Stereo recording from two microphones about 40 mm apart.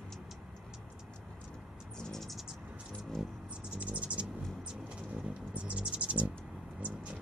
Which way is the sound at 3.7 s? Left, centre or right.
Right.